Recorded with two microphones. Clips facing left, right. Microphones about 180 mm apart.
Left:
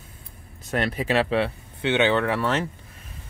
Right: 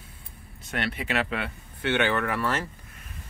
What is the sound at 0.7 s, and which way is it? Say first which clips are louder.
Speech: left 6 dB; 40° left (ahead or behind).